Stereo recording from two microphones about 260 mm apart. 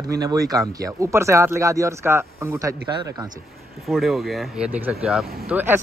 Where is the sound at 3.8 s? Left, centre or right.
Centre.